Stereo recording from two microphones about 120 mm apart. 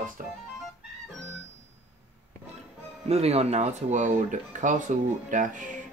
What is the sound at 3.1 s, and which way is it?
Speech, 60° right (ahead or behind).